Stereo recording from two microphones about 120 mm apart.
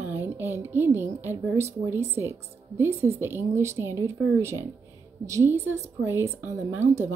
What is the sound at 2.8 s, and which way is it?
A woman's voice, 20° right (ahead or behind).